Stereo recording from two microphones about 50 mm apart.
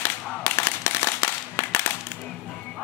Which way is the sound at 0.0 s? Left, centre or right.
Left.